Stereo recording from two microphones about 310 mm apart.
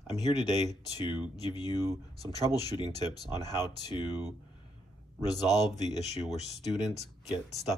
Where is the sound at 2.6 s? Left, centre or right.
Centre.